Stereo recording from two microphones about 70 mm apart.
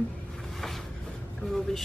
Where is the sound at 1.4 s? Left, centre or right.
Centre.